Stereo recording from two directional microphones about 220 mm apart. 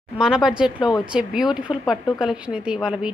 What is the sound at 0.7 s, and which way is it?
Speech, 20° left (ahead or behind).